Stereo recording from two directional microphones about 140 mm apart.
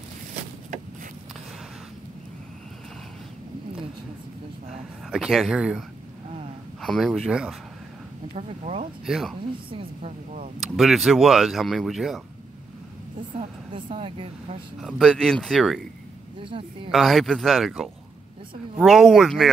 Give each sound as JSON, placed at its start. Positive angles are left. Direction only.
{"t": 5.1, "sound": "speech", "side_deg": 0}
{"t": 8.4, "sound": "speech", "side_deg": -50}
{"t": 9.0, "sound": "speech", "side_deg": 0}
{"t": 9.7, "sound": "speech", "side_deg": -40}
{"t": 10.8, "sound": "speech", "side_deg": 0}
{"t": 13.4, "sound": "speech", "side_deg": -45}
{"t": 14.8, "sound": "speech", "side_deg": 0}
{"t": 16.4, "sound": "speech", "side_deg": -35}
{"t": 16.9, "sound": "speech", "side_deg": 0}